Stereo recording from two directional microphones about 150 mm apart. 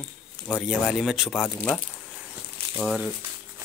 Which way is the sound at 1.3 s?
15° left (ahead or behind).